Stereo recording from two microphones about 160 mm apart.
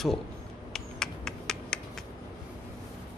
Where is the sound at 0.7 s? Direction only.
5° left (ahead or behind).